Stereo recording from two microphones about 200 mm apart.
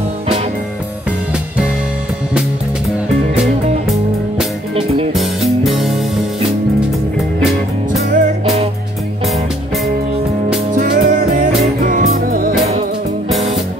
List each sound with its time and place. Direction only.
4.7 s music: 30° right (ahead or behind)
5.1 s music: centre (ahead or behind)
8.1 s music: 35° right (ahead or behind)
10.7 s music: 40° right (ahead or behind)